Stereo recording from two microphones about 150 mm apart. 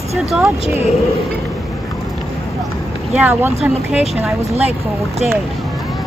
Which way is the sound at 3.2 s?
10° right (ahead or behind).